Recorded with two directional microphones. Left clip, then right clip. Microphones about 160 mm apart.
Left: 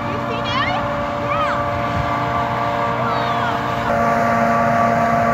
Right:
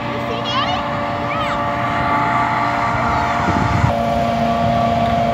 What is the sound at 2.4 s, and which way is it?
Vehicle, 90° left.